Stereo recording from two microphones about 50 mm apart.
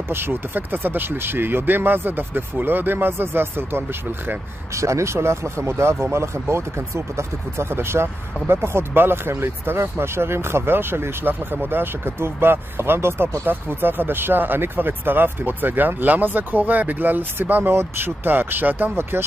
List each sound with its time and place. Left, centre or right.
0.1 s speech: right
4.7 s speech: right